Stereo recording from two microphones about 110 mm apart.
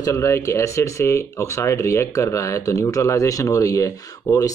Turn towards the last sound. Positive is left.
turn(degrees=30)  # may be behind; listen again after turning